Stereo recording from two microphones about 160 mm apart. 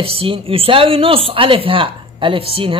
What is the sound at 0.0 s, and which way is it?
Speech, 35° right (ahead or behind).